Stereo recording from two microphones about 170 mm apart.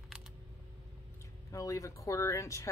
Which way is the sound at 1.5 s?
20° left (ahead or behind).